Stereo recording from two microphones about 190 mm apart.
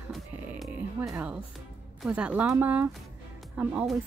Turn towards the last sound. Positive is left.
turn(degrees=0)  # may be behind; listen again after turning